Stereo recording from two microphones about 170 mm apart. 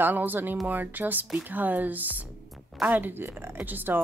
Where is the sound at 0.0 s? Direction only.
10° right (ahead or behind).